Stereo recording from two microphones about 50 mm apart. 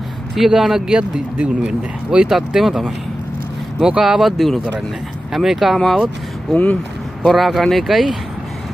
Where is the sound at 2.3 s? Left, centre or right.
Centre.